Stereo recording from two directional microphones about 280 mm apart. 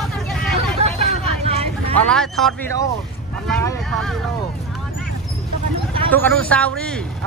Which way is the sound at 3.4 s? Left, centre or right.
Centre.